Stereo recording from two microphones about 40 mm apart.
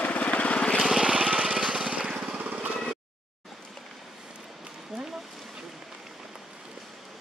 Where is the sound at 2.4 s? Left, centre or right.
Right.